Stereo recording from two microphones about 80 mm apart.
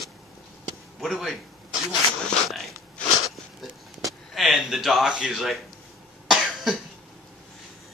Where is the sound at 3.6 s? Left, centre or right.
Centre.